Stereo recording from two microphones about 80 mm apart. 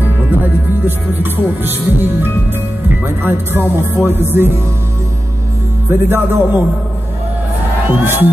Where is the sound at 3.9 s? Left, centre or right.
Left.